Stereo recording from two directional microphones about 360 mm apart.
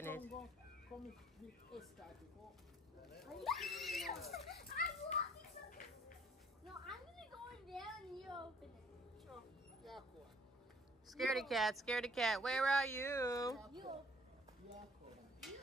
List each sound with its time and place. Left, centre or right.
0.0 s speech: centre
1.7 s speech: centre
3.3 s speech: centre
4.6 s children playing: left
6.9 s a sound: centre
9.8 s dog: centre
11.1 s speech: centre